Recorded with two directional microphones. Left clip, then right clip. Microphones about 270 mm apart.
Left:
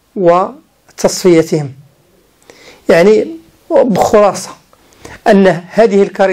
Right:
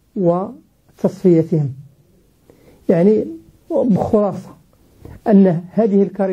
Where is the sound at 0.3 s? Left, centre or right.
Centre.